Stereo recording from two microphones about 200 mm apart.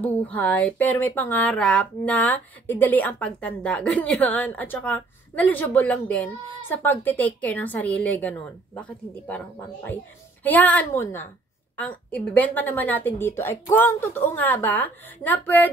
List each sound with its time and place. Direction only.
0.0 s speech: 10° left (ahead or behind)
10.4 s speech: 10° left (ahead or behind)